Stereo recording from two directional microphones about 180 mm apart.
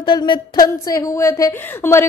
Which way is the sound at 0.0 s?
25° left (ahead or behind).